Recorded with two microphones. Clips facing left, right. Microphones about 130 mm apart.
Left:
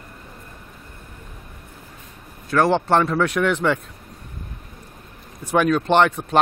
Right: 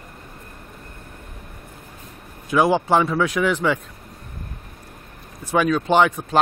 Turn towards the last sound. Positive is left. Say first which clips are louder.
# even
turn(degrees=-5)  # may be behind; listen again after turning